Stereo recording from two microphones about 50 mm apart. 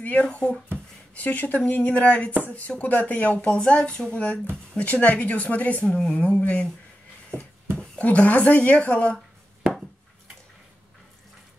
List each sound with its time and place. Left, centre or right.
0.0 s a woman's voice: left
3.3 s a woman's voice: centre
5.9 s speech: centre
6.1 s a woman's voice: left
8.0 s a woman's voice: left